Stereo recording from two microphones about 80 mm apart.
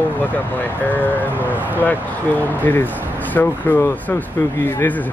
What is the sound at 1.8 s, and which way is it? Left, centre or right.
Speech, left.